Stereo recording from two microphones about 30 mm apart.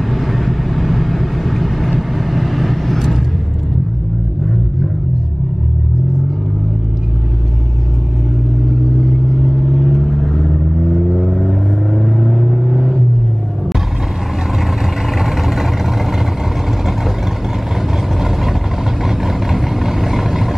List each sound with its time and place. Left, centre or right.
0.1 s vehicle: centre
9.0 s vehicle: centre
10.0 s vehicle: centre
15.1 s vehicle: centre
19.0 s vehicle: centre